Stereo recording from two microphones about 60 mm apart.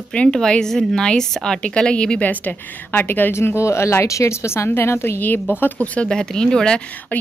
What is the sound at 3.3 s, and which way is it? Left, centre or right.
Speech, left.